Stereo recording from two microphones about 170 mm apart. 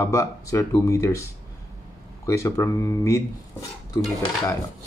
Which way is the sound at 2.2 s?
15° left (ahead or behind).